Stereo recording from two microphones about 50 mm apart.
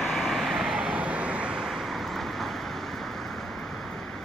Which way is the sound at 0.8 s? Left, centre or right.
Right.